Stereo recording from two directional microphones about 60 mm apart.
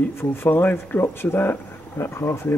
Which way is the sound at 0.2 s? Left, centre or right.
Left.